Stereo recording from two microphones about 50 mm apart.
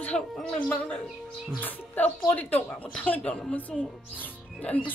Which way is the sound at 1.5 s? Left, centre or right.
Left.